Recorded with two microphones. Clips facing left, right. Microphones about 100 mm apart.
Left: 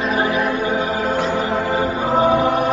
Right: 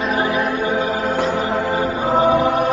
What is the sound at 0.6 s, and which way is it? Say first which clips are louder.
Music: even; 20° left (ahead or behind).